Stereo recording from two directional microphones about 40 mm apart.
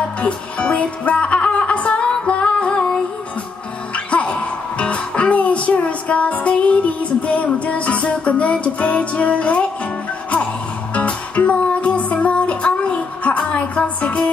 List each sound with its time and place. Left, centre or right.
0.2 s music: left
3.9 s music: left
11.0 s music: left